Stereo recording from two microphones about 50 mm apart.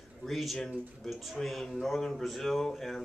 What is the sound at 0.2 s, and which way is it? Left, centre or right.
Speech, centre.